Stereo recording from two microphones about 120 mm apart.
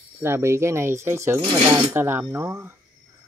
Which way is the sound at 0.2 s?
20° right (ahead or behind).